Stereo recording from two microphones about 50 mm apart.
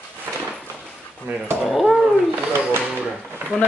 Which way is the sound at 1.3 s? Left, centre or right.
Right.